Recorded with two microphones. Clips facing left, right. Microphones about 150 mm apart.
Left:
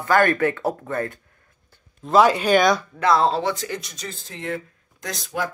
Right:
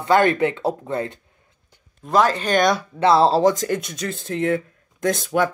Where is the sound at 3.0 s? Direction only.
30° right (ahead or behind).